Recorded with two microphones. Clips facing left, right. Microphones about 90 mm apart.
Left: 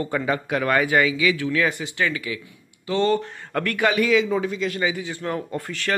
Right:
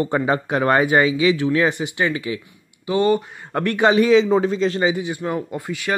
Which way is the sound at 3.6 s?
25° right (ahead or behind).